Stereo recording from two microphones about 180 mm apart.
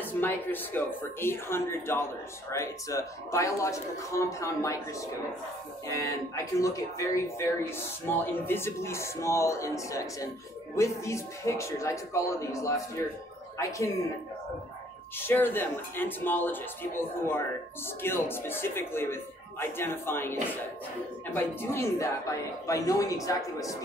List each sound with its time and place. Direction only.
0.0 s speech: 10° left (ahead or behind)
15.1 s speech: 10° left (ahead or behind)
21.4 s speech: 10° left (ahead or behind)